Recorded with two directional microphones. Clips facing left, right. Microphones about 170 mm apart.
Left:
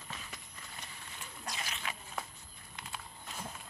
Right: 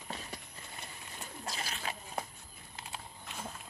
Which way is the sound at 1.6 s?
35° right (ahead or behind).